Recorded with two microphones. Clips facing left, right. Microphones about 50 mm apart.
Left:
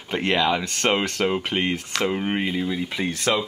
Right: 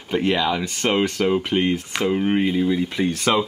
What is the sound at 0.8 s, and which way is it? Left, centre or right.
Speech, left.